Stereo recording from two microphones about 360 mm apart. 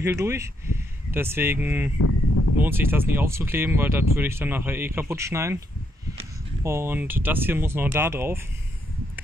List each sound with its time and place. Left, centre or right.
0.0 s speech: centre
2.0 s a sound: left
2.6 s speech: centre